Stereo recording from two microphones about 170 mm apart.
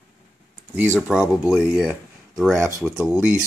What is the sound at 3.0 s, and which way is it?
Speech, 5° right (ahead or behind).